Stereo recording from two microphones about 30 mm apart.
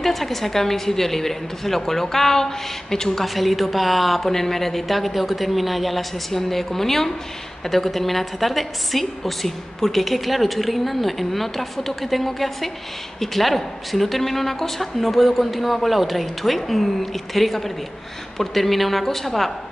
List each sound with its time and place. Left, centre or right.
0.0 s a woman's voice: centre
3.3 s a woman's voice: centre
4.3 s a woman's voice: centre